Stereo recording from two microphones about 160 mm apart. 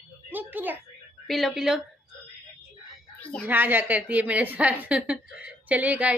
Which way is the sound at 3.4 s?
10° right (ahead or behind).